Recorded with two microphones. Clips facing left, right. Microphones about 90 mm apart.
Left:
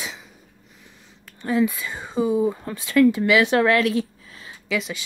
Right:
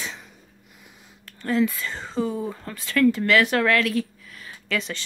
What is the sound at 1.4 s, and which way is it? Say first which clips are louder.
Speech: left 1 dB; 15° left (ahead or behind).